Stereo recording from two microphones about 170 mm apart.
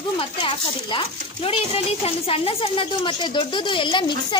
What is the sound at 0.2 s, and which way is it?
Speech, 30° left (ahead or behind).